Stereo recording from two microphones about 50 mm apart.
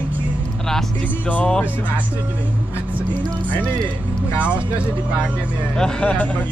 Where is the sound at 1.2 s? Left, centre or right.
Left.